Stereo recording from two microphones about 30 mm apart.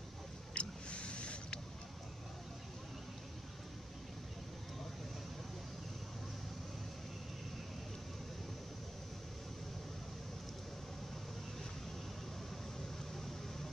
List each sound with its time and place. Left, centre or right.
0.6 s vehicle: left